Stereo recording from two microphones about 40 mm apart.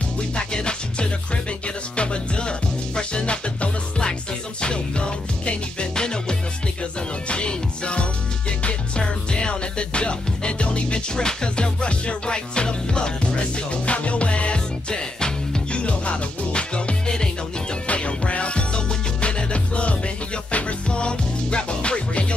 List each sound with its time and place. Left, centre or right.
0.4 s music: left
17.8 s music: left